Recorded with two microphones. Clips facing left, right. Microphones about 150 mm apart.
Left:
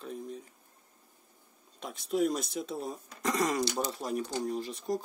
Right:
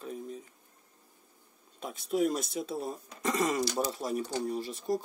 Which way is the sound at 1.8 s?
Centre (ahead or behind).